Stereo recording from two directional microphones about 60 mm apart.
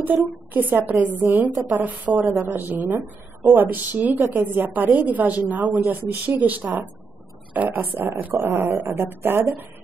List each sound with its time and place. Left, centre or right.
0.0 s a woman's voice: right
8.2 s a woman's voice: right